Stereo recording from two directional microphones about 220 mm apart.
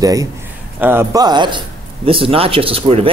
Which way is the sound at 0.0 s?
15° right (ahead or behind).